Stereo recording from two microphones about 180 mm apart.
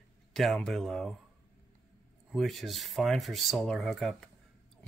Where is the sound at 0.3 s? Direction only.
Centre (ahead or behind).